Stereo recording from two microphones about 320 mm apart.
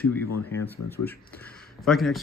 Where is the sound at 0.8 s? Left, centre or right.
Left.